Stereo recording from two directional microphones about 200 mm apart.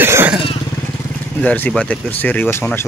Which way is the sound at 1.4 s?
5° left (ahead or behind).